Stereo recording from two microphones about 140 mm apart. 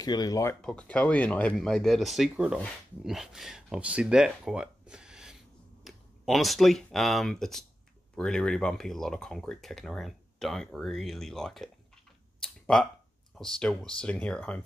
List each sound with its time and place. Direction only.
0.0 s speech: 25° left (ahead or behind)
0.6 s speech: 5° left (ahead or behind)
12.4 s a sound: 5° left (ahead or behind)
13.3 s speech: 5° left (ahead or behind)